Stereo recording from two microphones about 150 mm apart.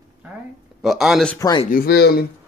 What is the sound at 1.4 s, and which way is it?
Speech, 25° left (ahead or behind).